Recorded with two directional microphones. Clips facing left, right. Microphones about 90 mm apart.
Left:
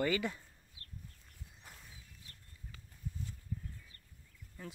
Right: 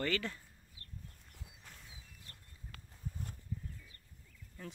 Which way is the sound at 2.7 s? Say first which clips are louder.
Even; 55° right (ahead or behind).